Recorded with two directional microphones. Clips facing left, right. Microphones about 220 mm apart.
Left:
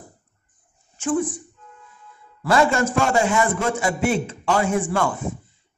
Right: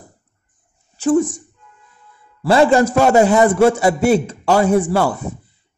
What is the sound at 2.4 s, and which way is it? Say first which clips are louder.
A man's voice: right 6 dB; 30° right (ahead or behind).